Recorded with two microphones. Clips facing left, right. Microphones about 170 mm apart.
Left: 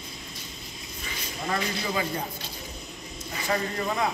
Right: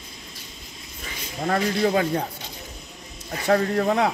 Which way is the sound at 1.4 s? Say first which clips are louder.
Right 8 dB; 60° right (ahead or behind).